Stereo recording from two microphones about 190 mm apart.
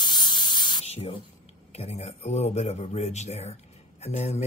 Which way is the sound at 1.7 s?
35° left (ahead or behind).